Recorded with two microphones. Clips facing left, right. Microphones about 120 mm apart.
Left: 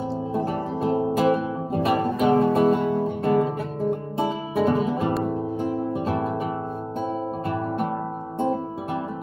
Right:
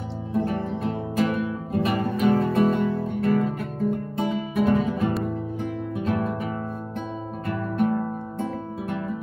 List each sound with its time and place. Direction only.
0.3 s music: 30° left (ahead or behind)
7.8 s music: 30° left (ahead or behind)